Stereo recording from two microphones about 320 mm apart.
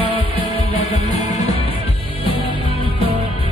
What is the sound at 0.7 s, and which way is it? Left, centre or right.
Music, left.